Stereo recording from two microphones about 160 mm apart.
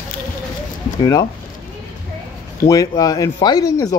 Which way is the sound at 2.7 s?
20° left (ahead or behind).